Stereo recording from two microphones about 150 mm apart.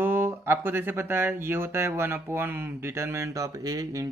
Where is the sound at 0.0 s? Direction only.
15° right (ahead or behind).